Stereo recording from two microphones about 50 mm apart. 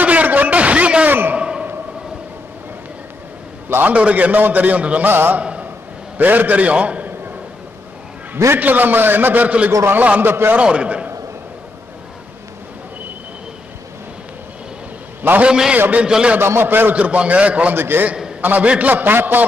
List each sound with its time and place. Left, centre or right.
0.0 s a sound: right
3.6 s a sound: right
3.9 s a man's voice: right
5.0 s a man's voice: right
5.3 s a sound: right
6.1 s a man's voice: right
8.5 s a man's voice: right
10.2 s a man's voice: right
10.6 s a man's voice: right
15.4 s a man's voice: centre
16.3 s a man's voice: right
16.9 s a man's voice: right
17.7 s a man's voice: right
18.4 s a man's voice: right